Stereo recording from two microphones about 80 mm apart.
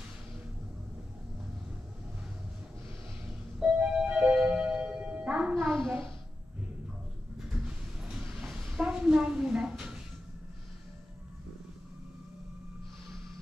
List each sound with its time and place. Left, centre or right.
3.6 s music: centre
5.5 s music: centre
7.6 s a sound: centre